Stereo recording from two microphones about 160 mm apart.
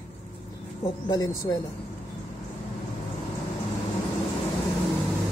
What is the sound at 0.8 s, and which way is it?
Speech, 25° left (ahead or behind).